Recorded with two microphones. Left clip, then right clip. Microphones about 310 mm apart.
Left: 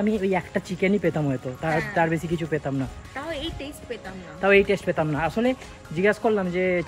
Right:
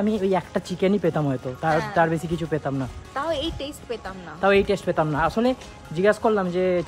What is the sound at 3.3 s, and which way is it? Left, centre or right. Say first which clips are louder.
Speech: right 4 dB; centre.